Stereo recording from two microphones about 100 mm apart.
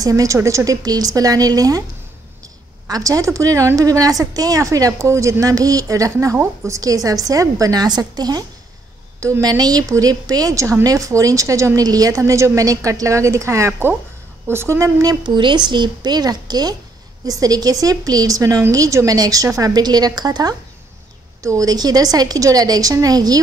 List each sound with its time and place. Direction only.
0.0 s speech: 35° right (ahead or behind)
2.9 s speech: 35° right (ahead or behind)